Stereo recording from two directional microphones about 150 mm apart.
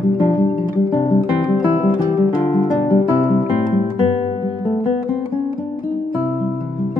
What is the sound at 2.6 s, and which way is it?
Guitar, 30° left (ahead or behind).